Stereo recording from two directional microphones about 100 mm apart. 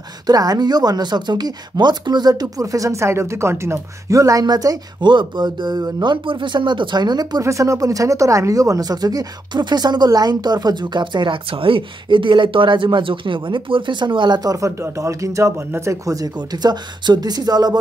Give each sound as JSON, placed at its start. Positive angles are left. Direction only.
{"t": 0.3, "sound": "speech", "side_deg": -40}
{"t": 6.2, "sound": "speech", "side_deg": -55}
{"t": 7.4, "sound": "speech", "side_deg": -30}